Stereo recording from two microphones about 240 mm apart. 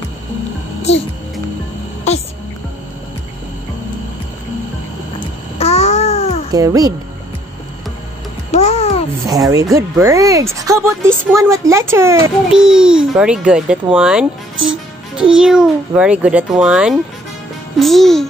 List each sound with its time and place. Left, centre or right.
5.6 s babbling: left
6.5 s speech: centre
8.5 s a child's voice: left
9.3 s a child's voice: centre